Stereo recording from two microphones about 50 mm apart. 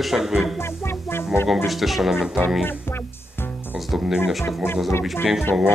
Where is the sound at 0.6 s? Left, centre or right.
Left.